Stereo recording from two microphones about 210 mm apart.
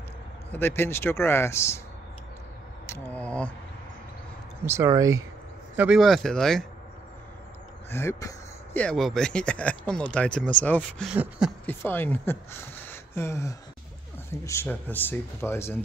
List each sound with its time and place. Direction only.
0.5 s speech: 10° left (ahead or behind)
2.9 s speech: 5° left (ahead or behind)
4.6 s speech: 15° right (ahead or behind)
5.8 s speech: centre (ahead or behind)
7.9 s speech: 10° left (ahead or behind); by 11.5 s 5° right (ahead or behind)
11.6 s speech: 10° left (ahead or behind)